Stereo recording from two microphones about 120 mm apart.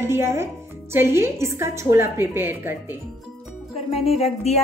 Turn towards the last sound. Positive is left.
turn(degrees=60)  # may be behind; listen again after turning